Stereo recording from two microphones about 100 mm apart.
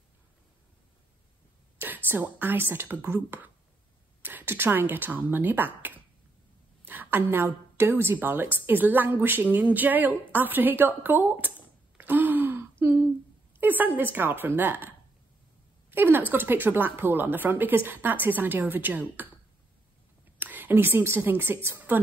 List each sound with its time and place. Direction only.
1.8 s a woman's voice: 20° right (ahead or behind)
12.0 s gasp: 20° right (ahead or behind)
13.6 s a woman's voice: 20° right (ahead or behind)
20.3 s a woman's voice: 20° right (ahead or behind)